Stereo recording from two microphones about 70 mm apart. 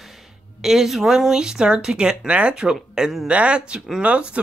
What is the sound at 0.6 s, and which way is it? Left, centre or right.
Speech, centre.